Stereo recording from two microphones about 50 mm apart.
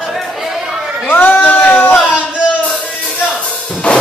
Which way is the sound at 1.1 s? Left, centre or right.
Left.